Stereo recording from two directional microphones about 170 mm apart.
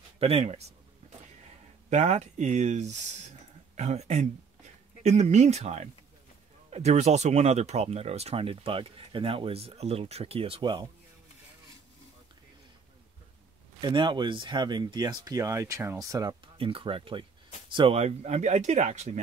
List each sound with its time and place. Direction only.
0.2 s speech: 35° right (ahead or behind)
1.9 s speech: 45° right (ahead or behind); by 10.9 s 25° right (ahead or behind)
13.7 s speech: 25° right (ahead or behind); by 19.1 s 45° right (ahead or behind)